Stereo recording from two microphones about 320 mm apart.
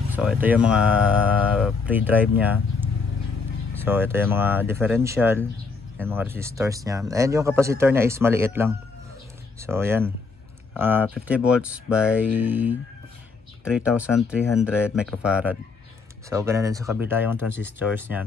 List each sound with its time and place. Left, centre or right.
0.1 s speech: centre
13.9 s speech: centre